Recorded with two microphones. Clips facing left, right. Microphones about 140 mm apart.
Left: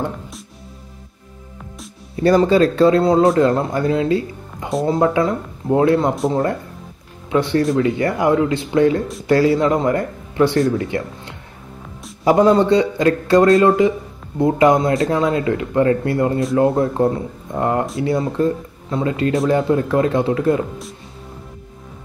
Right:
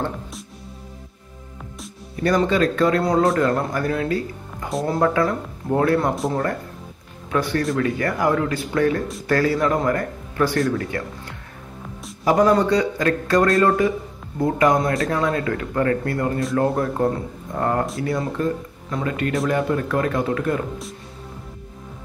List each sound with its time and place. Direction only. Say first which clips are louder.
2.2 s speech: left 5 dB; 30° left (ahead or behind)
7.2 s speech: left 5 dB; 25° left (ahead or behind)